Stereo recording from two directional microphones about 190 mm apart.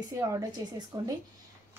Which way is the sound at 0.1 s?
20° right (ahead or behind).